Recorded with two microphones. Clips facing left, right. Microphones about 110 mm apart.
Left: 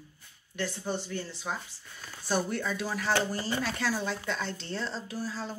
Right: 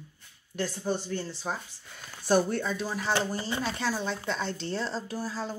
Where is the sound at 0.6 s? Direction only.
30° right (ahead or behind).